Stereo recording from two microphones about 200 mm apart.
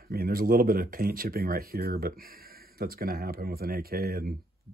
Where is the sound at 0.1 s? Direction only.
45° right (ahead or behind).